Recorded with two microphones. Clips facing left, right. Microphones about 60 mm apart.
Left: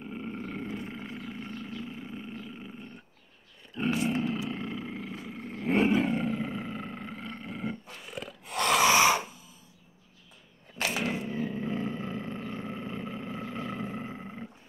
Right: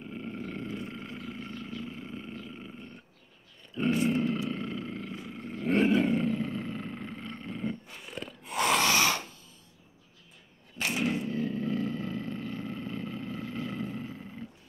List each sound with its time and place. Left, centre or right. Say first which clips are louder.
0.0 s wild animals: left 1 dB; centre
1.8 s vehicle: even; centre
3.7 s grunt: right 2 dB; centre
8.8 s a sound: left 4 dB; centre
11.1 s vehicle: right 1 dB; centre